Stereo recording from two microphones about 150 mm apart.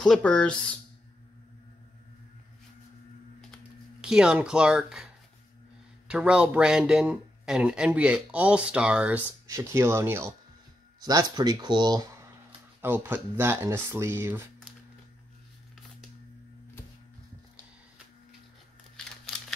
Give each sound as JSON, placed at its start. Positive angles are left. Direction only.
{"t": 0.0, "sound": "speech", "side_deg": 5}
{"t": 3.3, "sound": "typing", "side_deg": 0}
{"t": 6.0, "sound": "speech", "side_deg": -5}
{"t": 9.5, "sound": "speech", "side_deg": -20}
{"t": 11.0, "sound": "speech", "side_deg": -25}
{"t": 12.8, "sound": "speech", "side_deg": -15}